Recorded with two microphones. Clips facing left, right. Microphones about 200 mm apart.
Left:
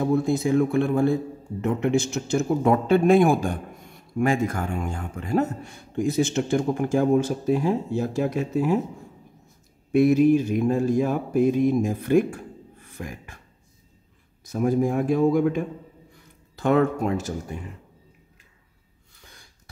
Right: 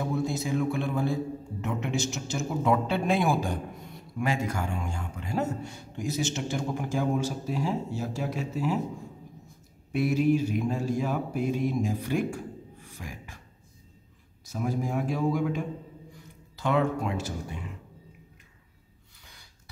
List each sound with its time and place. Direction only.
0.0 s speech: 55° left (ahead or behind)
9.9 s speech: 50° left (ahead or behind)
14.4 s speech: 55° left (ahead or behind)